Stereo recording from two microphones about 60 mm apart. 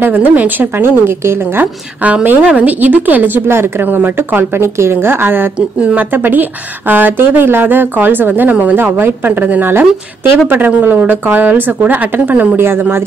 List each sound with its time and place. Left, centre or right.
0.0 s a woman's voice: right
2.0 s a woman's voice: right